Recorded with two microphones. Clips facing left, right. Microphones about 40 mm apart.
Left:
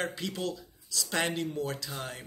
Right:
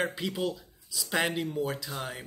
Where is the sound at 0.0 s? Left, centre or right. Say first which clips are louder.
Right 3 dB; centre.